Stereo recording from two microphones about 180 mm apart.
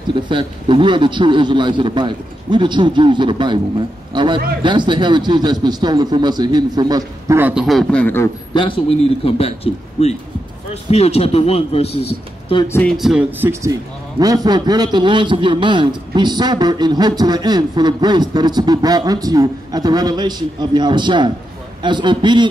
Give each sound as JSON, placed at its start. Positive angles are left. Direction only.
{"t": 0.1, "sound": "a man's voice", "side_deg": -25}
{"t": 8.5, "sound": "speech", "side_deg": 30}
{"t": 12.6, "sound": "speech", "side_deg": 10}
{"t": 12.9, "sound": "a man's voice", "side_deg": 0}